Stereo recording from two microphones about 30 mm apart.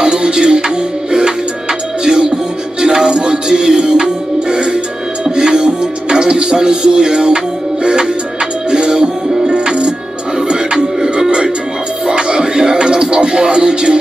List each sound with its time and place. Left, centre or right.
0.0 s music: right
2.0 s music: right